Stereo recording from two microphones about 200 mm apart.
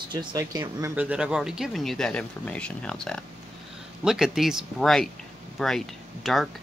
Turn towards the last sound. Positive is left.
turn(degrees=0)  # may be behind; listen again after turning